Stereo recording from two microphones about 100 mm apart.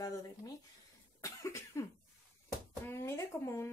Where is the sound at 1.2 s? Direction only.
30° left (ahead or behind).